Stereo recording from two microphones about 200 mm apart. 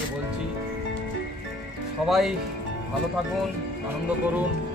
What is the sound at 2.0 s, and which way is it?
Speech, centre (ahead or behind).